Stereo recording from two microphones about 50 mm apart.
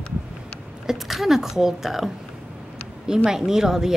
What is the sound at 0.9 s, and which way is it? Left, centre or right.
Speech, centre.